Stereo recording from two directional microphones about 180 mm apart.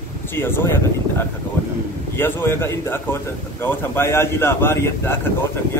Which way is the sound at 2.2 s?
10° left (ahead or behind).